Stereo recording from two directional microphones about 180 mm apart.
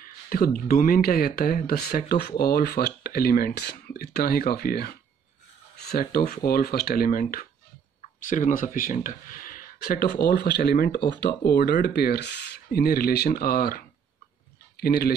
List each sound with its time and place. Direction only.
0.0 s speech: 55° left (ahead or behind)